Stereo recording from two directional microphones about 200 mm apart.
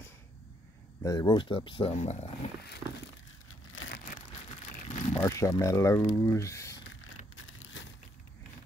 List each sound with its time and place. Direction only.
1.0 s speech: 20° left (ahead or behind)
3.8 s crumpling: 90° left
4.8 s crumpling: 30° left (ahead or behind)
5.2 s speech: 15° left (ahead or behind)